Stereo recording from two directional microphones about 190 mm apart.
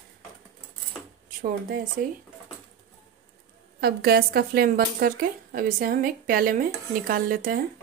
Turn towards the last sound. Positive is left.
turn(degrees=-50)  # may be behind; listen again after turning